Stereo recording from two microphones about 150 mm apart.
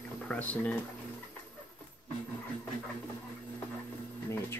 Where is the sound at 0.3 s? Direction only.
10° left (ahead or behind).